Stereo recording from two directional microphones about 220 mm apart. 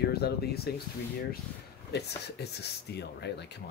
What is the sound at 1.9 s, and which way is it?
Speech, 50° left (ahead or behind).